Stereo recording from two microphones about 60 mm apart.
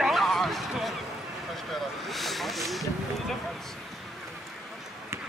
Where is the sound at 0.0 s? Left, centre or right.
Centre.